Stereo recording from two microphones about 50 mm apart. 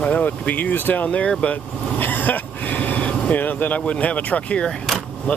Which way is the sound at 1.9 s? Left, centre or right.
Left.